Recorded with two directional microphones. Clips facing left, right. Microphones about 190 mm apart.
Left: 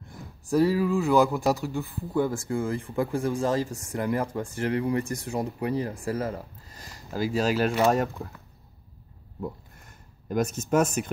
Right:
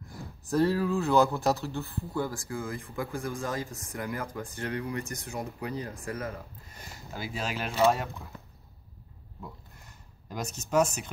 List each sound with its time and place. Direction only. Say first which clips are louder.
0.5 s speech: left 3 dB; 10° left (ahead or behind); by 8.1 s 45° left (ahead or behind)
9.8 s speech: left 11 dB; 50° left (ahead or behind)